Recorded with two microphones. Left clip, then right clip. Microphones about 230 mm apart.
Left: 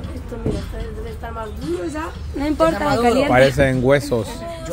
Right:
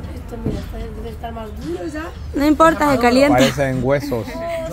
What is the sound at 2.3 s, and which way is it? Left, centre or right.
Speech, right.